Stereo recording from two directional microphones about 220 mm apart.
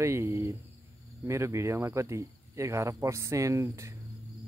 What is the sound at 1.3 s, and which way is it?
Speech, 15° right (ahead or behind).